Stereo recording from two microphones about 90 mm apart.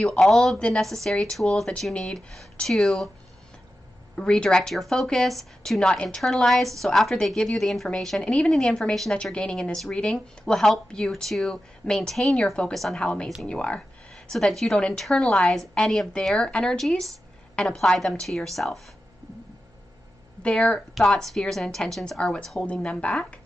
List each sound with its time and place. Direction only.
0.0 s speech: 5° left (ahead or behind)
4.1 s a woman's voice: 10° left (ahead or behind)
20.4 s a woman's voice: 10° left (ahead or behind)